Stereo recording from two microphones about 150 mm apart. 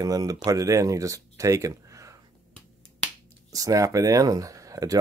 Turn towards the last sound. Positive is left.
turn(degrees=-25)  # may be behind; listen again after turning